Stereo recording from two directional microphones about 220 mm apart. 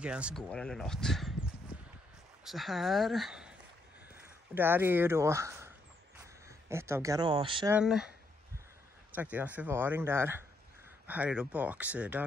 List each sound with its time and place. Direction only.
0.0 s speech: 5° right (ahead or behind)
2.4 s speech: centre (ahead or behind)
6.7 s speech: 10° right (ahead or behind)
7.7 s speech: 5° right (ahead or behind)
9.1 s speech: 5° right (ahead or behind)